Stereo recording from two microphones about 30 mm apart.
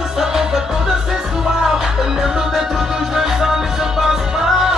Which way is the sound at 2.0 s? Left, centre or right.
Centre.